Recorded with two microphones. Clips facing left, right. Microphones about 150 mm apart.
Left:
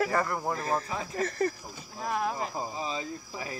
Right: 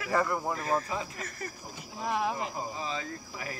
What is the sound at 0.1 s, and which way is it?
Speech, 5° right (ahead or behind).